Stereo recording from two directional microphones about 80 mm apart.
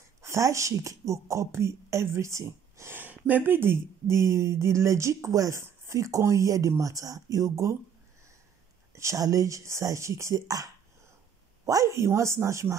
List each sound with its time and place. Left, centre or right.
0.2 s a woman's voice: right
2.9 s speech: right
8.9 s speech: right